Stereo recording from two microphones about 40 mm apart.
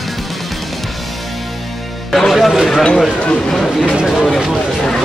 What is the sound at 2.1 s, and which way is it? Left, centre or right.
Music, centre.